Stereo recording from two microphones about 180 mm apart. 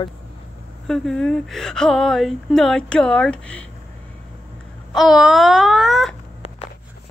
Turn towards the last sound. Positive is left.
turn(degrees=0)  # may be behind; listen again after turning